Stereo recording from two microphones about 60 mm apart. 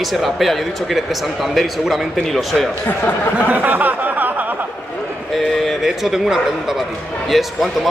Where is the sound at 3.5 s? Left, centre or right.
Right.